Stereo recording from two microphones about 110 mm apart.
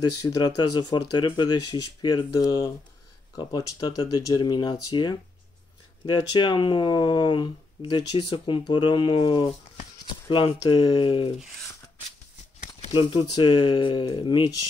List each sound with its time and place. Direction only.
0.4 s speech: 40° left (ahead or behind)
12.9 s speech: 45° left (ahead or behind)